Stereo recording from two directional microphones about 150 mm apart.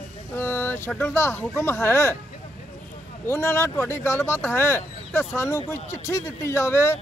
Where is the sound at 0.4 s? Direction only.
15° left (ahead or behind).